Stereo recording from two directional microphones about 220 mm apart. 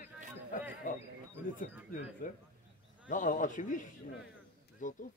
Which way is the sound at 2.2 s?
40° left (ahead or behind).